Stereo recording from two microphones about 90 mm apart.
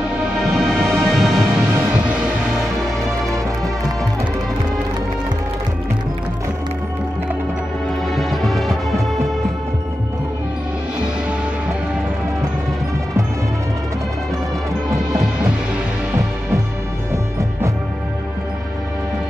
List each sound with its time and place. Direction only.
0.6 s music: centre (ahead or behind)
8.1 s music: centre (ahead or behind)
17.1 s music: 35° right (ahead or behind)